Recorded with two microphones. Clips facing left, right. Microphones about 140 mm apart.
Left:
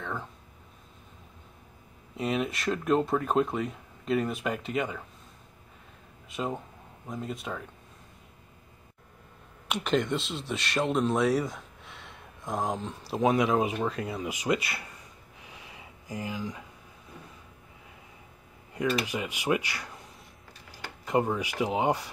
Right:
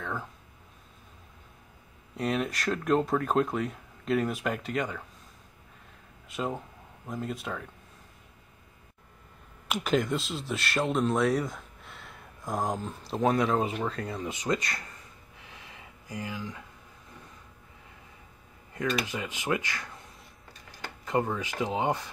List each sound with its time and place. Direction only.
0.0 s speech: centre (ahead or behind)
2.1 s speech: centre (ahead or behind)
6.2 s speech: centre (ahead or behind)
9.7 s speech: 5° right (ahead or behind)
16.1 s speech: 20° left (ahead or behind)
18.7 s a sound: 10° left (ahead or behind)
19.0 s speech: 15° left (ahead or behind)